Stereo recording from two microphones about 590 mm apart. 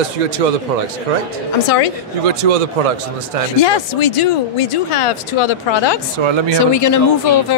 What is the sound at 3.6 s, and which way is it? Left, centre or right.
Speech, left.